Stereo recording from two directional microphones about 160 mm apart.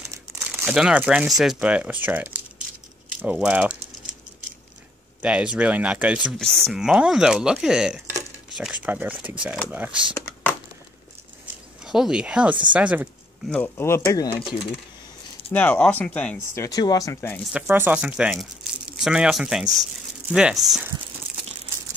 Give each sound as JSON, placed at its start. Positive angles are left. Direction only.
{"t": 0.1, "sound": "speech", "side_deg": -10}
{"t": 5.2, "sound": "speech", "side_deg": -5}
{"t": 11.8, "sound": "speech", "side_deg": -5}
{"t": 13.5, "sound": "speech", "side_deg": 15}
{"t": 15.5, "sound": "speech", "side_deg": 10}
{"t": 16.6, "sound": "speech", "side_deg": 25}
{"t": 17.5, "sound": "speech", "side_deg": -10}